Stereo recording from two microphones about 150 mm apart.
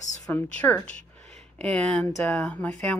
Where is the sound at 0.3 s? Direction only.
10° left (ahead or behind).